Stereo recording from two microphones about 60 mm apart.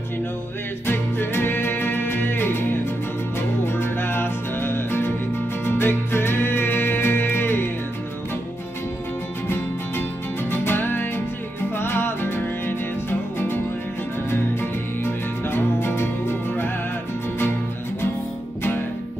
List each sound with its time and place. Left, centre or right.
0.8 s music: left
10.6 s music: left
14.3 s music: left